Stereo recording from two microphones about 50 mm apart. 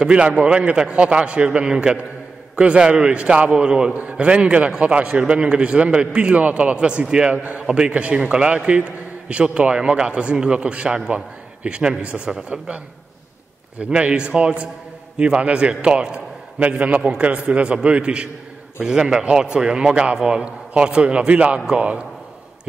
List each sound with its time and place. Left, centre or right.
0.0 s a man's voice: centre
3.9 s a man's voice: right
16.5 s a man's voice: right